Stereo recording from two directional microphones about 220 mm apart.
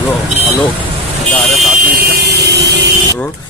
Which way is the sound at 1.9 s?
40° right (ahead or behind).